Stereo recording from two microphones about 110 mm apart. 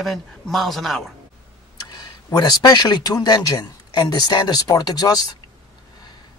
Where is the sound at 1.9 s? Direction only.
35° left (ahead or behind).